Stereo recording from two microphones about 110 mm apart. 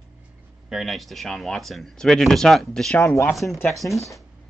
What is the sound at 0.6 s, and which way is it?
Speech, centre (ahead or behind).